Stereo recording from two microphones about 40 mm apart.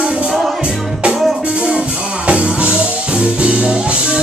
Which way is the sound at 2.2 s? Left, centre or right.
Right.